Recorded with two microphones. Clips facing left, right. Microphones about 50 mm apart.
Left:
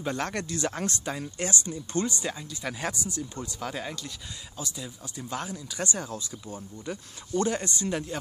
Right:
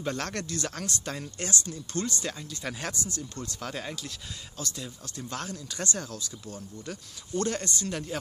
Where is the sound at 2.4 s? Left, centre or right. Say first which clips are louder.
Left 2 dB; centre; by 8.0 s left.